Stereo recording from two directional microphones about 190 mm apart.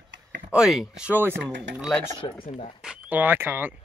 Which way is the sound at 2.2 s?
25° left (ahead or behind).